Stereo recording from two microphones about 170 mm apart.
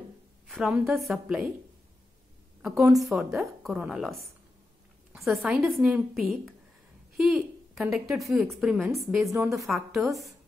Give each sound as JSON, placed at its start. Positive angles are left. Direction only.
{"t": 0.5, "sound": "a woman's voice", "side_deg": -5}
{"t": 2.6, "sound": "speech", "side_deg": -15}
{"t": 3.0, "sound": "a woman's voice", "side_deg": 0}
{"t": 9.2, "sound": "speech", "side_deg": -20}
{"t": 9.7, "sound": "a woman's voice", "side_deg": 0}